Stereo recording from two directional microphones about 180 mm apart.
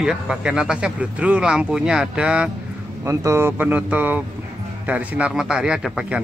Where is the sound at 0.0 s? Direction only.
5° right (ahead or behind).